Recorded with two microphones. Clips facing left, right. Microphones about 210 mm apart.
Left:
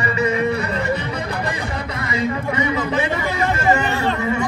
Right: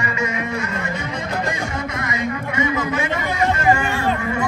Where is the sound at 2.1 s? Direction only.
30° left (ahead or behind).